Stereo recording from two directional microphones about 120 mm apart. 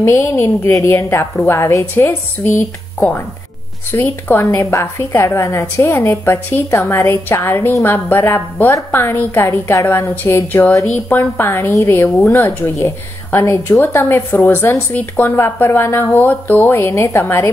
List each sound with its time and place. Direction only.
0.0 s a woman's voice: 20° left (ahead or behind)